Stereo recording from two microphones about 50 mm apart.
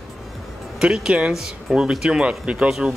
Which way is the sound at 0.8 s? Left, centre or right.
Centre.